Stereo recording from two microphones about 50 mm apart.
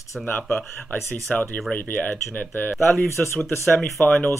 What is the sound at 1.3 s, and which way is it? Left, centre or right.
Speech, centre.